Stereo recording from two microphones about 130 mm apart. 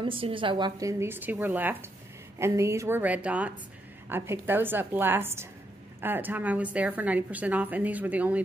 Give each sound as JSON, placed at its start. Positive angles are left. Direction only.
{"t": 0.0, "sound": "a woman's voice", "side_deg": -40}